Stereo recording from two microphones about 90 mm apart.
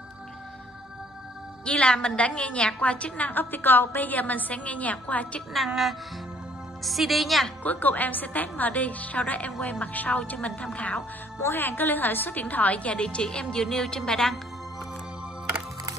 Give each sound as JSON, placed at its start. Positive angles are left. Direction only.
{"t": 1.6, "sound": "a woman's voice", "side_deg": 10}
{"t": 5.7, "sound": "a woman's voice", "side_deg": 0}
{"t": 7.6, "sound": "a woman's voice", "side_deg": 20}
{"t": 11.3, "sound": "a woman's voice", "side_deg": 25}